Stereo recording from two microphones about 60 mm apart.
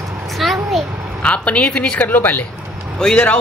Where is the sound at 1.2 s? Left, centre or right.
Left.